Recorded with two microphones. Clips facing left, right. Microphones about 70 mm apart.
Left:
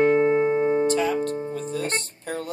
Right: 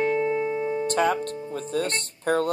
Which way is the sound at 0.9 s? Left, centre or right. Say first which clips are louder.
Even; right.